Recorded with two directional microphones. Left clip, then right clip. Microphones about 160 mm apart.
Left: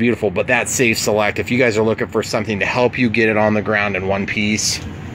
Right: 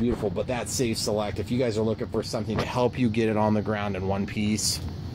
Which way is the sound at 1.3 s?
5° left (ahead or behind).